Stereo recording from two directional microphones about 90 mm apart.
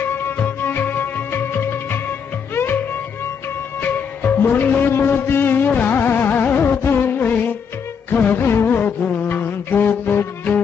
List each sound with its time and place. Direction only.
0.0 s music: 25° left (ahead or behind)
3.8 s music: 20° left (ahead or behind)